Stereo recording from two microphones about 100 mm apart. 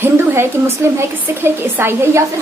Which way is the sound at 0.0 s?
25° right (ahead or behind).